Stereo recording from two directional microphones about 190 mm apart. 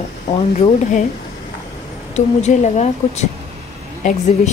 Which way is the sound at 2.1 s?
35° left (ahead or behind).